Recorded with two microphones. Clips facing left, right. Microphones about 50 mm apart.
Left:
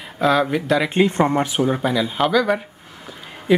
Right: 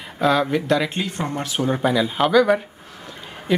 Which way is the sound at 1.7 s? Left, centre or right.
Centre.